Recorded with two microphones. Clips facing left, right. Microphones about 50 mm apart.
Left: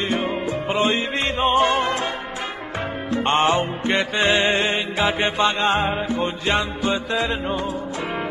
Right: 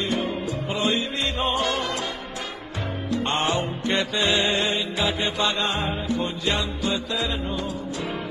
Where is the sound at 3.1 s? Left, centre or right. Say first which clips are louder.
Left 6 dB; left.